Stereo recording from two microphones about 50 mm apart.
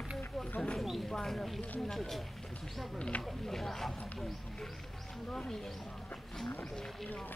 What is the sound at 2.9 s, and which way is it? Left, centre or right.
Speech, left.